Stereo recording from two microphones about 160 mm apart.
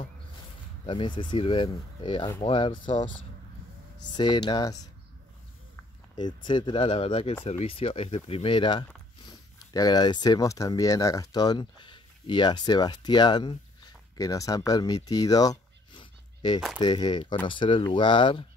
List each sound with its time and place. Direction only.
0.8 s speech: 30° left (ahead or behind)
4.1 s speech: 30° left (ahead or behind)
6.1 s speech: 30° left (ahead or behind)